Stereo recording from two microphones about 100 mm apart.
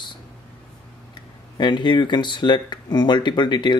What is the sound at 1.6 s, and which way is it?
Speech, 50° left (ahead or behind).